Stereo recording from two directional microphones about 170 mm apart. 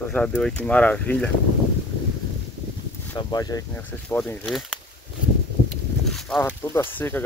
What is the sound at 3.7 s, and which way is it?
Speech, 10° left (ahead or behind).